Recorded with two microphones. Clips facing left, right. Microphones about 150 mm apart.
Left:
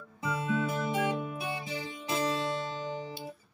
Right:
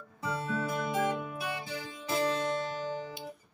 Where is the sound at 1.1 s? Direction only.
20° left (ahead or behind).